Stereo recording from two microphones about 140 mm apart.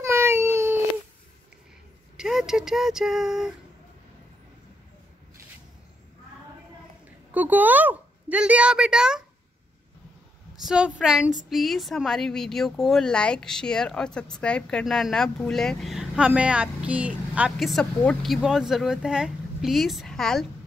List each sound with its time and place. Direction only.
0.0 s baby cry: 20° right (ahead or behind)
2.1 s speech: 5° right (ahead or behind)
7.1 s a woman's voice: 10° right (ahead or behind)
10.6 s speech: 5° right (ahead or behind)